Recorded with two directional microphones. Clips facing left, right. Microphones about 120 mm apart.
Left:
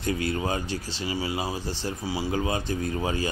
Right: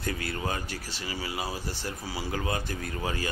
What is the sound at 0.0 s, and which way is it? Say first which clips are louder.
Speech: left 5 dB; 25° left (ahead or behind).